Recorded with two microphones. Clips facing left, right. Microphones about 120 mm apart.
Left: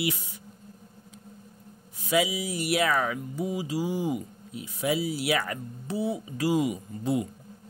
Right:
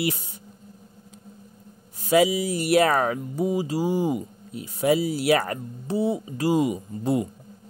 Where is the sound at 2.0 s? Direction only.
40° right (ahead or behind).